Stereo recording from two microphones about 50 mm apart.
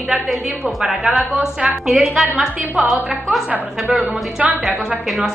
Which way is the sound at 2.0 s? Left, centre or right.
Centre.